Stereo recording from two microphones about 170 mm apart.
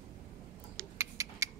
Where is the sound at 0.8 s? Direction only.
20° right (ahead or behind).